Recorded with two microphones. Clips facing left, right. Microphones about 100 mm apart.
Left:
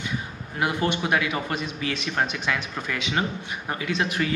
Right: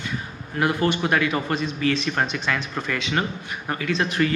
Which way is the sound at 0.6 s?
15° left (ahead or behind).